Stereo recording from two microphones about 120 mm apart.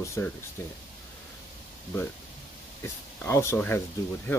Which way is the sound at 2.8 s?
20° left (ahead or behind).